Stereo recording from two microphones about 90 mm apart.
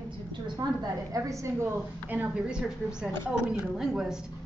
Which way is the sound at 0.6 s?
55° right (ahead or behind).